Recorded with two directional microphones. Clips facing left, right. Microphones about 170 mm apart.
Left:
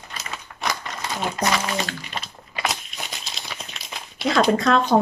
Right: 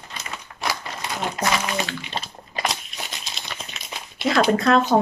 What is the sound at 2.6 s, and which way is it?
Crumpling, centre (ahead or behind).